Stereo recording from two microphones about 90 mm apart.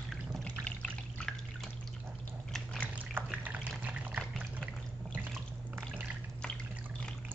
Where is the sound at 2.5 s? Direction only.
5° left (ahead or behind).